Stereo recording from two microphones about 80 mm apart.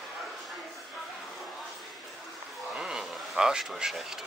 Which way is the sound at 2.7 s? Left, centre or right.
Centre.